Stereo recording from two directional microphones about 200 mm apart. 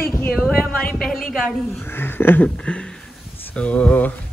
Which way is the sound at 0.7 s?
45° left (ahead or behind).